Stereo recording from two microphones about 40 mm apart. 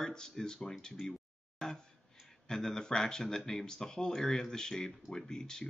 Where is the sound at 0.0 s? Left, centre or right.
Centre.